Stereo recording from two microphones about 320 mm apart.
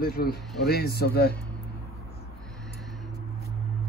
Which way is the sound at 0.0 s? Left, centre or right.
Left.